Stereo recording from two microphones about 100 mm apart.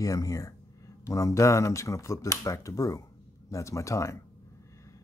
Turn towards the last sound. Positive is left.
turn(degrees=30)  # may be behind; listen again after turning